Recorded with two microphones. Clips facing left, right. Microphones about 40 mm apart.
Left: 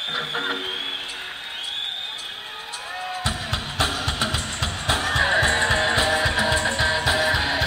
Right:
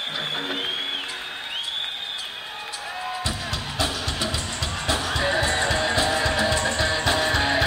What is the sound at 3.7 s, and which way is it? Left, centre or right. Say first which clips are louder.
Music: left 3 dB; left.